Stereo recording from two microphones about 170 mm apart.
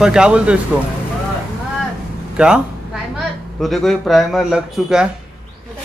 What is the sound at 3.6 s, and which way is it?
A man's voice, centre (ahead or behind).